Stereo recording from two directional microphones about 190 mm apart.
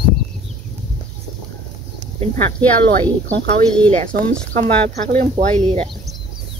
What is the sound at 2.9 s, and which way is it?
Sizzle, 55° right (ahead or behind).